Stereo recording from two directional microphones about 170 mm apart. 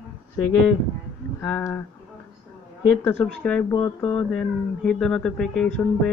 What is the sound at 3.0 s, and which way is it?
Speech, 5° left (ahead or behind).